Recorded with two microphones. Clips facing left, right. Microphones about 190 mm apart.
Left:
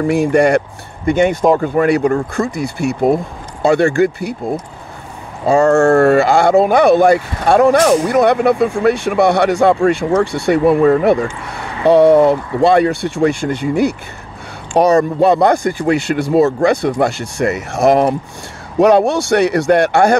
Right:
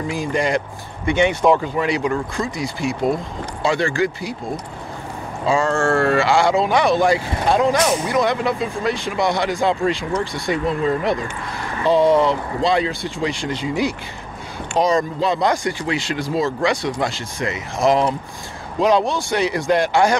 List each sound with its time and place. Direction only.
0.0 s speech: 65° left (ahead or behind)
1.0 s speech: 40° left (ahead or behind)
5.5 s speech: 45° left (ahead or behind); by 20.2 s 60° left (ahead or behind)